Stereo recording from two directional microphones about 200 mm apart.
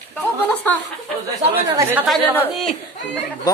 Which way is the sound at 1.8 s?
10° right (ahead or behind).